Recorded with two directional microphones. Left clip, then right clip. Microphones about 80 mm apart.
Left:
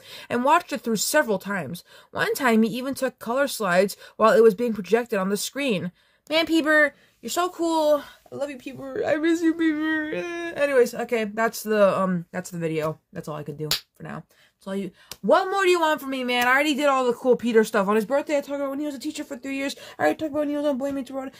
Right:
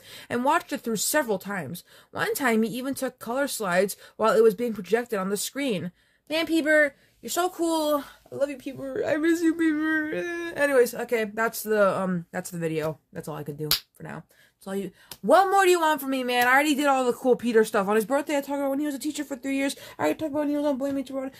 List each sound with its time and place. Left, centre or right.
0.3 s speech: left
7.6 s speech: centre
8.3 s speech: centre
11.3 s speech: centre
12.1 s speech: centre
15.2 s speech: centre
15.6 s speech: centre
17.6 s speech: centre
18.0 s speech: centre
20.3 s speech: centre